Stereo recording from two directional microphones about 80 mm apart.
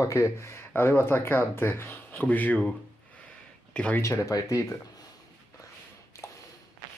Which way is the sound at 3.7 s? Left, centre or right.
Centre.